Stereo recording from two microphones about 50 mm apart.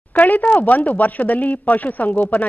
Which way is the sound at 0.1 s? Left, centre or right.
Left.